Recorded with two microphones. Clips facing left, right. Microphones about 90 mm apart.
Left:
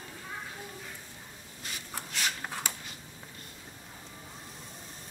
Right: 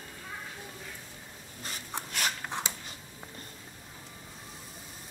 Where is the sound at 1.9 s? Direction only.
25° right (ahead or behind).